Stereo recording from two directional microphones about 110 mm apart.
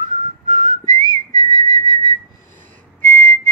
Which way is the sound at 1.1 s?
40° right (ahead or behind).